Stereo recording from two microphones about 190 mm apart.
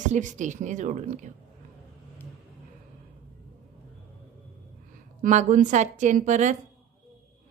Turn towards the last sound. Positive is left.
turn(degrees=-40)  # may be behind; listen again after turning